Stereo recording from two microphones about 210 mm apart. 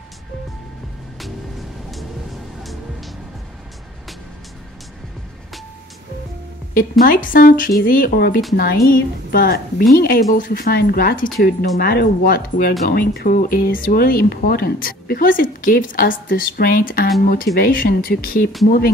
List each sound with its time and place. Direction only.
6.7 s speech: 45° left (ahead or behind)